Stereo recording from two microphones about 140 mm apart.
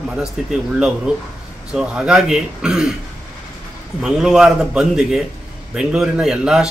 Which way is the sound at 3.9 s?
5° right (ahead or behind).